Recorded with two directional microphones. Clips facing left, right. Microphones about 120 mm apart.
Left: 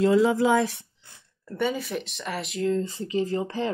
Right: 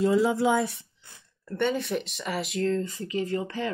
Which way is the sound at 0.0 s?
90° left.